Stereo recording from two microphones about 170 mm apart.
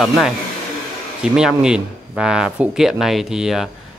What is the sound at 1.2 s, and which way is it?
Speech, 5° right (ahead or behind).